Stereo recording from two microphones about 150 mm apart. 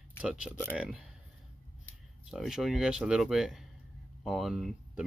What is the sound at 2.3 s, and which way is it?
Speech, centre (ahead or behind).